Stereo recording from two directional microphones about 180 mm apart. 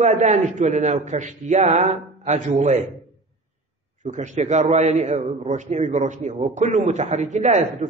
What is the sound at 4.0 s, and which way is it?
A man's voice, 45° right (ahead or behind).